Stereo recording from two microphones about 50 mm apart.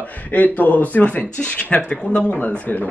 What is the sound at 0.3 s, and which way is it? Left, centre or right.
A man's voice, left.